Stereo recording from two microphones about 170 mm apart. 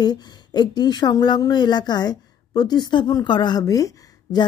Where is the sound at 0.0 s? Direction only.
25° left (ahead or behind).